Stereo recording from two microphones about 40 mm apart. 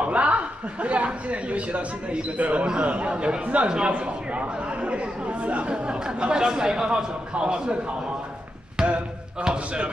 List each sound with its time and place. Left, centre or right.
0.0 s a woman's voice: right
2.6 s speech: right
8.8 s a sound: centre
9.4 s speech: right